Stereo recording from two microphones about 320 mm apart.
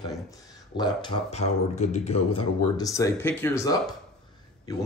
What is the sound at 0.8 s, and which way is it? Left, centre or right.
Speech, centre.